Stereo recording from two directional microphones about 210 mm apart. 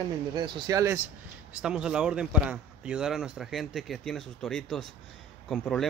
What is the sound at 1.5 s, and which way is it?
Speech, 5° right (ahead or behind).